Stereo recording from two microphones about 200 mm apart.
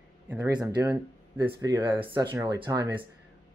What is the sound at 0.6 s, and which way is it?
Speech, 15° right (ahead or behind).